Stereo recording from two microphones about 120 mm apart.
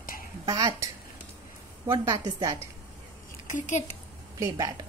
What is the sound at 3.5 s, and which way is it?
Speech, 90° left.